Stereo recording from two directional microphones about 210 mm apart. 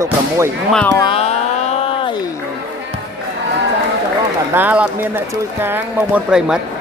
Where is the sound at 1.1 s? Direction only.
30° left (ahead or behind).